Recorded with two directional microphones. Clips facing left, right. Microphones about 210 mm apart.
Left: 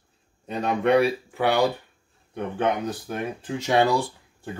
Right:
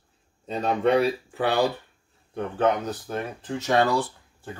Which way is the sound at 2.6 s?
10° left (ahead or behind).